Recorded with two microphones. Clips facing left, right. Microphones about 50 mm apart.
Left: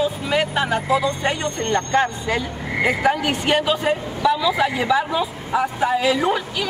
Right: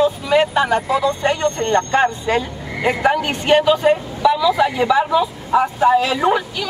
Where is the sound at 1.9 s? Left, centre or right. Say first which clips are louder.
Right 3 dB; right.